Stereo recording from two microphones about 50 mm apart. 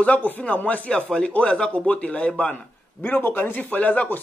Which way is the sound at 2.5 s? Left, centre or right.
Left.